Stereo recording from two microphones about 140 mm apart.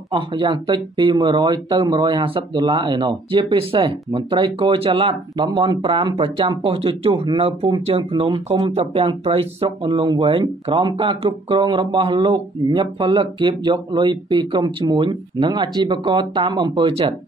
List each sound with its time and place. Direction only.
0.1 s speech: 35° right (ahead or behind)
9.9 s speech: 35° right (ahead or behind)